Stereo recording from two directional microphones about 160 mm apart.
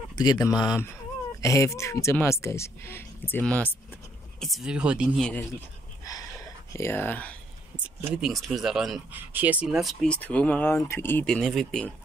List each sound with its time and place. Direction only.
0.1 s speech: 25° left (ahead or behind); by 4.5 s 10° left (ahead or behind)
4.5 s speech: 5° right (ahead or behind)
6.7 s speech: 15° left (ahead or behind)
7.8 s speech: 10° right (ahead or behind)
10.0 s speech: 10° left (ahead or behind)